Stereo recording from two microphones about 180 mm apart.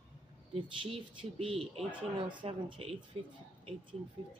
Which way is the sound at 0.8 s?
30° right (ahead or behind).